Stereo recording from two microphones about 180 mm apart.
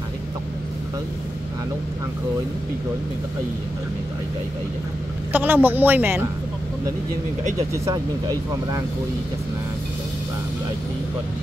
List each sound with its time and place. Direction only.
5.3 s speech: 10° right (ahead or behind)
7.7 s speech: 15° right (ahead or behind)